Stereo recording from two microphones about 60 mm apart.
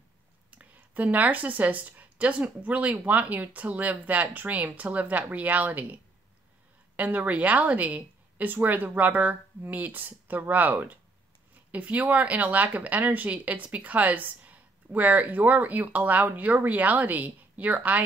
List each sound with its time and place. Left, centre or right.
0.5 s a woman's voice: right
7.0 s a woman's voice: right